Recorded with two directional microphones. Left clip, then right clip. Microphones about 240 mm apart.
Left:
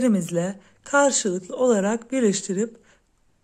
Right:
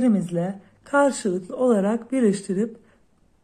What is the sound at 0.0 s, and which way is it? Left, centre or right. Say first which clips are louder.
Speech: even; left.